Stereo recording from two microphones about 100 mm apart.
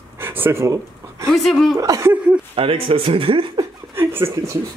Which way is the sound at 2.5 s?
70° right (ahead or behind).